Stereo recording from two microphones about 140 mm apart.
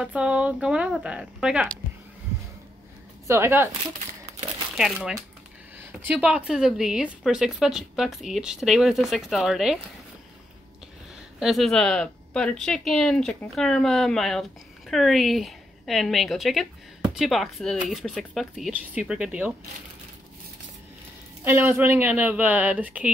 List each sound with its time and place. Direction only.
0.0 s a woman's voice: 10° right (ahead or behind)
3.3 s a woman's voice: 20° right (ahead or behind)
5.9 s a woman's voice: 10° right (ahead or behind)
11.3 s a woman's voice: centre (ahead or behind)
21.5 s a woman's voice: 15° right (ahead or behind)